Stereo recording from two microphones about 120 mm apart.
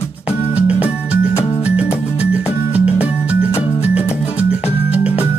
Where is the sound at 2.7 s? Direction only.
10° right (ahead or behind).